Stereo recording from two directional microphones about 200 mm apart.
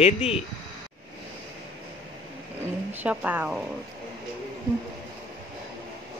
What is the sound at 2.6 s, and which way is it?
Speech, 10° right (ahead or behind).